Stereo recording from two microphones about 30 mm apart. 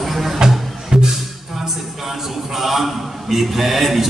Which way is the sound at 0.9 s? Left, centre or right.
Right.